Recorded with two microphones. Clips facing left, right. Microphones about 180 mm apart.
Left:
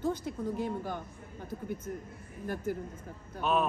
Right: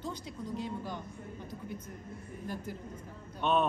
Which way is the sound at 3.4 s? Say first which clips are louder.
Even; 5° left (ahead or behind).